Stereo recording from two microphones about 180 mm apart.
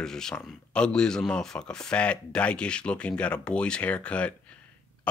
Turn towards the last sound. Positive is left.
turn(degrees=5)  # may be behind; listen again after turning